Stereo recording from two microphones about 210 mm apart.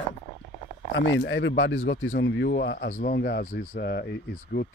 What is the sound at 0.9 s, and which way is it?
Speech, 60° left (ahead or behind).